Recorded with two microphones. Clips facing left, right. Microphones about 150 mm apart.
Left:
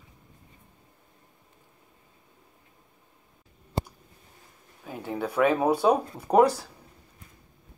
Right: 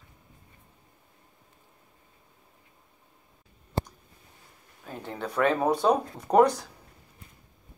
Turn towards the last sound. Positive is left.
turn(degrees=5)  # may be behind; listen again after turning